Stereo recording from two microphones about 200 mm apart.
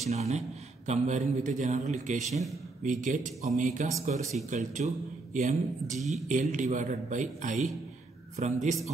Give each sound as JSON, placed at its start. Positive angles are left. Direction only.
{"t": 0.0, "sound": "a man's voice", "side_deg": -35}